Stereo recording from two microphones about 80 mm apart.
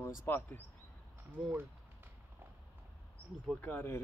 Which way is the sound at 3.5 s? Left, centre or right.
Left.